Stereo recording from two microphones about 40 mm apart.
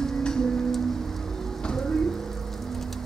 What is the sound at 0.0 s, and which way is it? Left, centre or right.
Music, centre.